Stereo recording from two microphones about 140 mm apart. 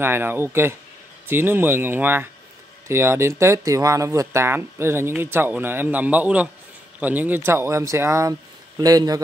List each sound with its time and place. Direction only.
0.0 s speech: 15° right (ahead or behind)